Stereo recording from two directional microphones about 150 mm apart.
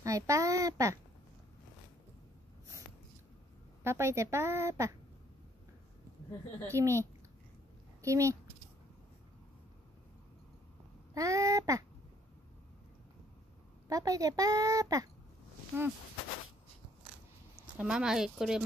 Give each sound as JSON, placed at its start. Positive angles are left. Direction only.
{"t": 0.0, "sound": "a child's voice", "side_deg": -20}
{"t": 3.8, "sound": "a woman's voice", "side_deg": -20}
{"t": 6.7, "sound": "a woman's voice", "side_deg": -20}
{"t": 11.1, "sound": "a woman's voice", "side_deg": -20}
{"t": 13.8, "sound": "a woman's voice", "side_deg": -25}
{"t": 17.7, "sound": "speech", "side_deg": -5}